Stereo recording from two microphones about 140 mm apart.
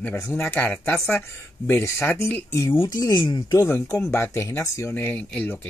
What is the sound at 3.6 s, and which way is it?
Speech, 20° left (ahead or behind).